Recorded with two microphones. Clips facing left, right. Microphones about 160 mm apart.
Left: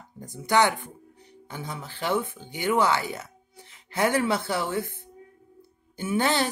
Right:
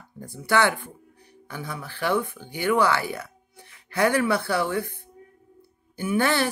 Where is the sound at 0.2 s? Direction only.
20° left (ahead or behind).